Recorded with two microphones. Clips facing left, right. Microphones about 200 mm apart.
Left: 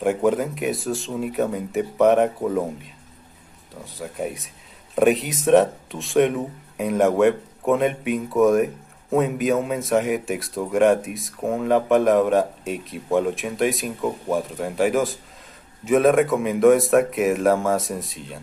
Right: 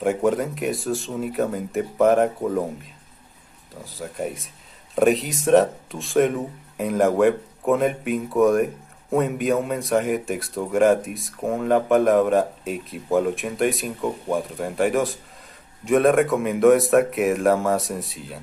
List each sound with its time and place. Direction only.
0.0 s speech: centre (ahead or behind)